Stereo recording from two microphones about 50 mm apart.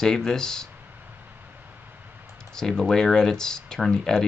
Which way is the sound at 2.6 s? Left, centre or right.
Centre.